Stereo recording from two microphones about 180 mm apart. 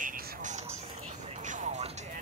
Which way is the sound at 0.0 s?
45° right (ahead or behind).